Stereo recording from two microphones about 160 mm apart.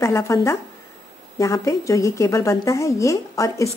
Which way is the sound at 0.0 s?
20° left (ahead or behind).